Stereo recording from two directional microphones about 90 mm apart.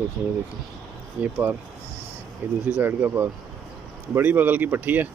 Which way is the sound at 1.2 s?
20° right (ahead or behind).